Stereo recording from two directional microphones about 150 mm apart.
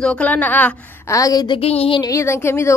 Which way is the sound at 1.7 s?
40° left (ahead or behind).